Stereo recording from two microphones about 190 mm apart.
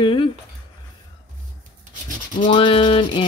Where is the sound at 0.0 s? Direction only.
25° left (ahead or behind).